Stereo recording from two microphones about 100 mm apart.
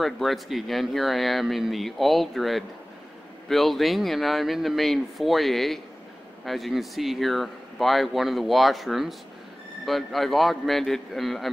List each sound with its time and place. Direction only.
0.0 s speech: centre (ahead or behind)